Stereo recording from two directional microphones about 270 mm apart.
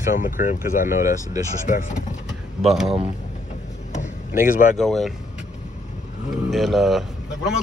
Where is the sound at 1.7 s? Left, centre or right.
Left.